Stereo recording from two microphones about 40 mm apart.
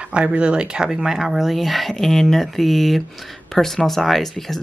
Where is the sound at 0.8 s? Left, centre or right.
Centre.